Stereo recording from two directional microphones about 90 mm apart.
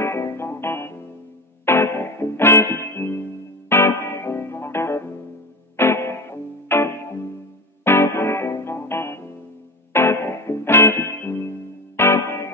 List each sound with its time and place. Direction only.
0.0 s music: 30° left (ahead or behind)